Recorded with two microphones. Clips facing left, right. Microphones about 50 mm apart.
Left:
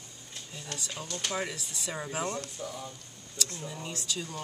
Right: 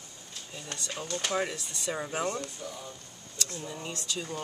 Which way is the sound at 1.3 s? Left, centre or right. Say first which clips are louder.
Right 3 dB; centre.